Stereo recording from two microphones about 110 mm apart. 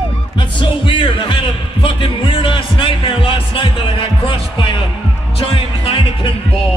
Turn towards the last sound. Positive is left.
turn(degrees=55)  # may be behind; listen again after turning